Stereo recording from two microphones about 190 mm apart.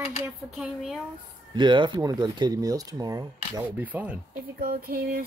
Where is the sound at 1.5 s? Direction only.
25° right (ahead or behind).